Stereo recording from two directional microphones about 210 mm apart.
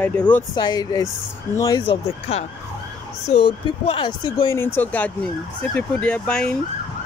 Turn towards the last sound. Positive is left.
turn(degrees=5)  # may be behind; listen again after turning